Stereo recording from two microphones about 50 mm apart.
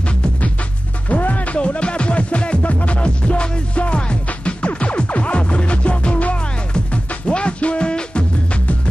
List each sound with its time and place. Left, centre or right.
1.0 s music: left